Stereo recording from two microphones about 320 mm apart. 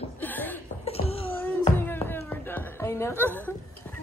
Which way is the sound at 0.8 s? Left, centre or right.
Centre.